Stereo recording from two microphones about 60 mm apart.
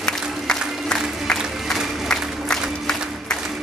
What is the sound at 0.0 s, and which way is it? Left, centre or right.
Music, centre.